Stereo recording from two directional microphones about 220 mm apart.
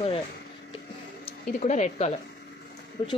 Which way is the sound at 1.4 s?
35° left (ahead or behind).